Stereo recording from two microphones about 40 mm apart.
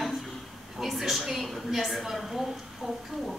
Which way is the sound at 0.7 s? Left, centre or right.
Centre.